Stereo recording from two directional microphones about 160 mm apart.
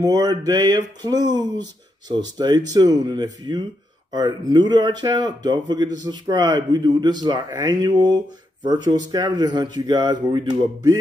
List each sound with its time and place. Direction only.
0.0 s speech: 25° right (ahead or behind)